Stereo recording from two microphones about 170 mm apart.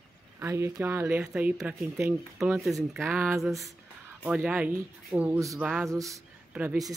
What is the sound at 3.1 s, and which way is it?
A woman's voice, 15° right (ahead or behind).